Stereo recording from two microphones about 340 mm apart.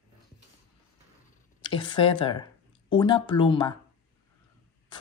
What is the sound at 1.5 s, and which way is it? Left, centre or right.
Speech, centre.